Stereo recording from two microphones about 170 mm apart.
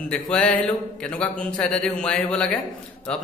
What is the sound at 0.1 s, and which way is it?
Music, 5° left (ahead or behind).